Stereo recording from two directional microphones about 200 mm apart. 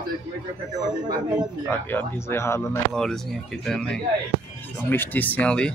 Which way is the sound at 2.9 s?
Centre (ahead or behind).